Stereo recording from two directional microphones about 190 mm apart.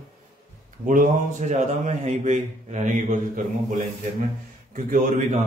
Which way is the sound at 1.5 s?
40° right (ahead or behind).